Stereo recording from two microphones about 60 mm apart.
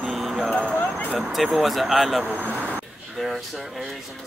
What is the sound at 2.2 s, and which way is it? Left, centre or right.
Vehicle, right.